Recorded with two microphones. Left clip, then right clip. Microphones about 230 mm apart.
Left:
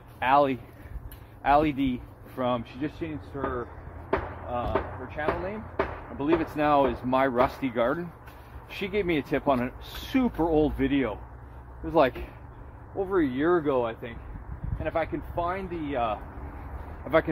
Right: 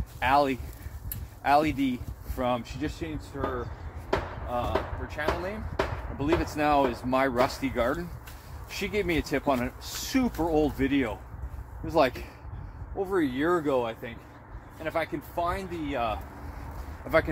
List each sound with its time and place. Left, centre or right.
0.2 s speech: centre
4.5 s speech: centre
6.1 s speech: centre
14.8 s speech: centre